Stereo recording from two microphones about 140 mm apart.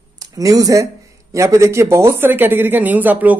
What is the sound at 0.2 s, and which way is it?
Speech, 25° right (ahead or behind).